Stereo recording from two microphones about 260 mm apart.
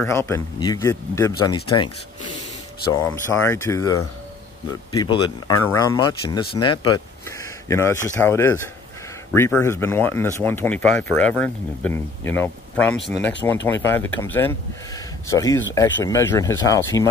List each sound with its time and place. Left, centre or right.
0.0 s speech: centre
2.9 s speech: centre